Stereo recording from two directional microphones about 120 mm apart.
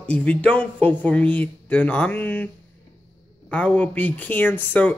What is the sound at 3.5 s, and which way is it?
Speech, 15° left (ahead or behind).